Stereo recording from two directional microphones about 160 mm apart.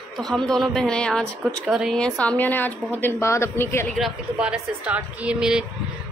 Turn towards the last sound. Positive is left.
turn(degrees=-5)  # may be behind; listen again after turning